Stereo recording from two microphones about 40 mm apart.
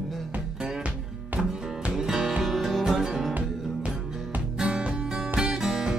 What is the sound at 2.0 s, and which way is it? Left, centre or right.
Music, centre.